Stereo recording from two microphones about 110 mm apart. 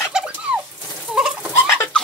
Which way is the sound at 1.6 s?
25° left (ahead or behind).